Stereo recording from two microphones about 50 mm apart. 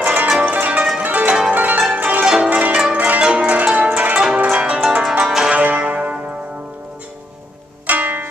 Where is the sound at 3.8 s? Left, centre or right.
Right.